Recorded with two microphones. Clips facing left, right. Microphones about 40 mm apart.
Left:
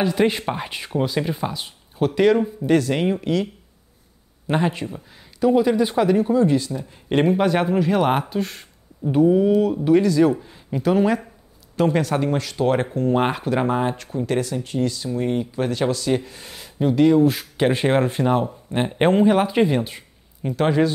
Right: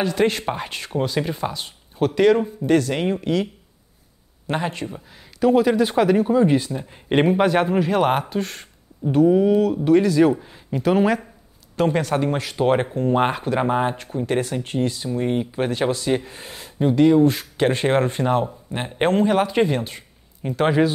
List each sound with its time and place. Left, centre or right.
0.0 s speech: centre
4.5 s speech: centre
4.8 s speech: centre
6.4 s speech: right; by 9.3 s centre
9.3 s speech: centre
9.6 s speech: centre
10.1 s speech: centre
12.9 s speech: centre
13.7 s speech: centre
14.4 s speech: right
14.8 s speech: right
15.1 s speech: centre
16.5 s speech: centre
20.4 s speech: centre